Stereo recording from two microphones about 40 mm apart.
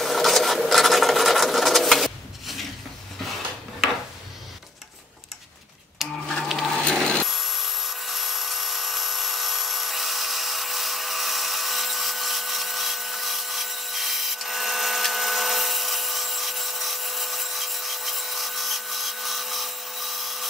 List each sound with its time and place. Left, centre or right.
0.0 s sewing machine: centre
6.0 s printer: centre
6.8 s wood: left
7.2 s a sound: centre